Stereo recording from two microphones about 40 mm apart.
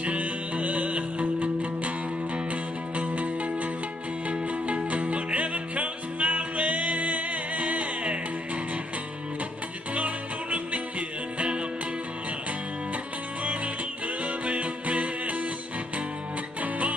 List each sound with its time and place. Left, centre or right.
0.0 s music: right
3.0 s music: right
9.9 s music: right
14.2 s music: right